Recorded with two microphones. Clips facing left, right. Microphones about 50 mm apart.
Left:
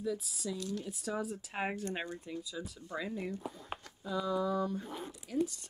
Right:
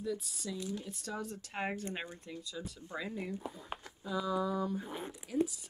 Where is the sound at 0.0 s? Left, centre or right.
Centre.